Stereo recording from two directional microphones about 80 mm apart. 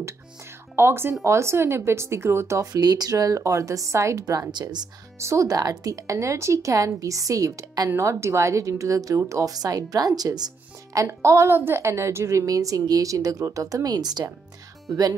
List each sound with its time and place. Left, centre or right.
0.7 s speech: right
2.6 s speech: right
4.5 s speech: right
5.2 s speech: right
11.0 s speech: right